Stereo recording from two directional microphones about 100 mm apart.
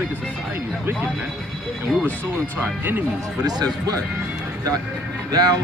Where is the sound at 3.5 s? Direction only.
40° right (ahead or behind).